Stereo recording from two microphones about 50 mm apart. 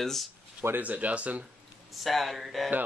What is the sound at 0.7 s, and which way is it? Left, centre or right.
Speech, right.